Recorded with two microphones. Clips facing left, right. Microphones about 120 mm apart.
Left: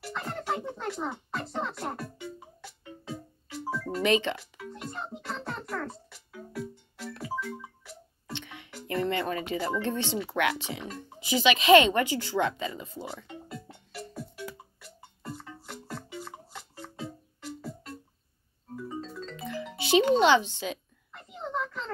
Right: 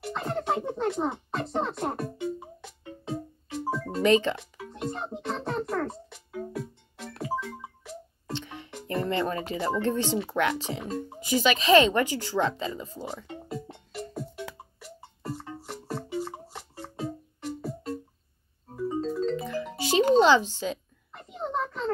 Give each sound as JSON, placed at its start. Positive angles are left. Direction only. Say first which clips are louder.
{"t": 0.0, "sound": "a sound", "louder": "right 5 dB", "side_deg": -20}
{"t": 4.0, "sound": "speech", "louder": "right 4 dB", "side_deg": -40}
{"t": 4.4, "sound": "music", "louder": "right 5 dB", "side_deg": -25}
{"t": 8.3, "sound": "music", "louder": "right 5 dB", "side_deg": -35}
{"t": 8.6, "sound": "music", "louder": "even", "side_deg": -25}
{"t": 9.1, "sound": "speech", "louder": "right 2 dB", "side_deg": -35}
{"t": 13.5, "sound": "music", "louder": "right 6 dB", "side_deg": -25}
{"t": 19.5, "sound": "music", "louder": "left 6 dB", "side_deg": -40}
{"t": 21.1, "sound": "a sound", "louder": "right 3 dB", "side_deg": -20}